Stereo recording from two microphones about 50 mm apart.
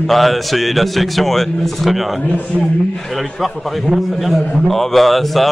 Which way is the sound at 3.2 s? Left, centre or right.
Centre.